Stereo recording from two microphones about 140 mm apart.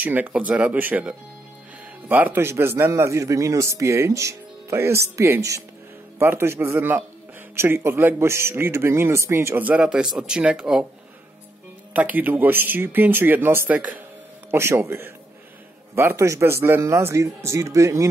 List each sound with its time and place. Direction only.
0.0 s a man's voice: 10° right (ahead or behind)
11.9 s a man's voice: 10° right (ahead or behind)